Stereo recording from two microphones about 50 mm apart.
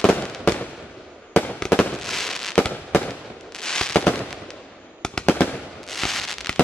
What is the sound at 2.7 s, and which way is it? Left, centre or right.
Fireworks, left.